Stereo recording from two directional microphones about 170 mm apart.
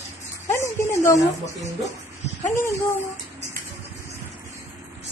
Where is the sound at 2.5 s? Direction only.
15° left (ahead or behind).